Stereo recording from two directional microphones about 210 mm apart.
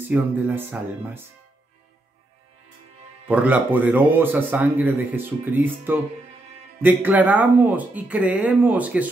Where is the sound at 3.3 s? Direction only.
5° right (ahead or behind).